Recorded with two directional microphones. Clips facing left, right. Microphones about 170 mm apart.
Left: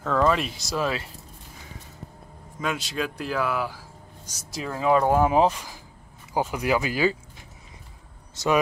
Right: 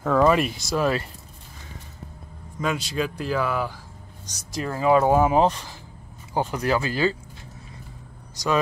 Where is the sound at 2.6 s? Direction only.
Centre (ahead or behind).